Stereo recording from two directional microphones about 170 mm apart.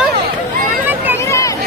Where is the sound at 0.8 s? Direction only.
10° right (ahead or behind).